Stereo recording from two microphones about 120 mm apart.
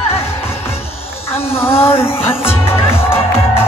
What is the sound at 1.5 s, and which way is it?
Music, 20° left (ahead or behind).